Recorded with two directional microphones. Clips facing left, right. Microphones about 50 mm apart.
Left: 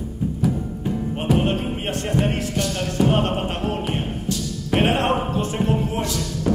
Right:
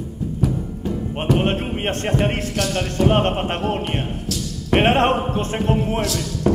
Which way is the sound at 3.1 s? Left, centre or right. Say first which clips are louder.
Right 2 dB; right.